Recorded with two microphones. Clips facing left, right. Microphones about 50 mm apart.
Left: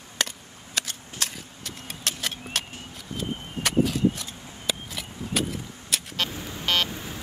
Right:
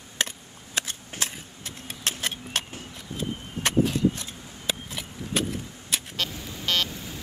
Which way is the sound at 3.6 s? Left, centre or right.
Centre.